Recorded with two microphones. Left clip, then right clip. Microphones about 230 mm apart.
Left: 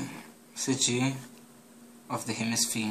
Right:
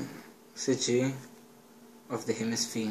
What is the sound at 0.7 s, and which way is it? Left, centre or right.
Speech, left.